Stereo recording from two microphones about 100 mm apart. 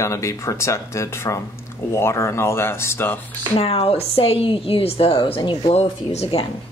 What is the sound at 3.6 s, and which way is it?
A woman's voice, 85° left.